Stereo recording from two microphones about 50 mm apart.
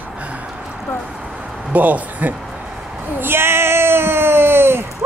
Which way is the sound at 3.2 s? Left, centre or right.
Right.